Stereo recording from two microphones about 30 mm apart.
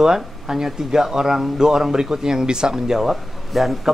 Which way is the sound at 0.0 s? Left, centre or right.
Centre.